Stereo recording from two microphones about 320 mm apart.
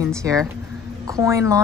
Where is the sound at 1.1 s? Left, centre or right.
Centre.